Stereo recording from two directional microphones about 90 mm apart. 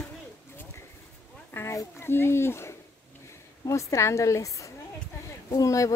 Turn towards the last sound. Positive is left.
turn(degrees=35)  # may be behind; listen again after turning